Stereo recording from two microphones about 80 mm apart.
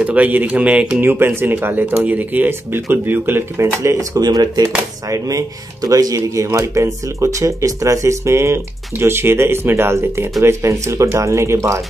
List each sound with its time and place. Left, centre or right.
0.0 s speech: centre
1.1 s speech: right